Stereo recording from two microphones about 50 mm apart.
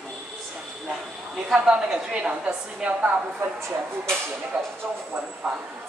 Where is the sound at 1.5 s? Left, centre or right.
Centre.